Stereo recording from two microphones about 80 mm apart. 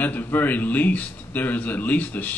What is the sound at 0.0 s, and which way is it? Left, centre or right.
Speech, left.